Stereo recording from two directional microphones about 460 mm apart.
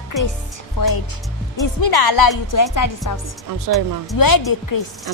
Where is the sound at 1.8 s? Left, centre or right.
Left.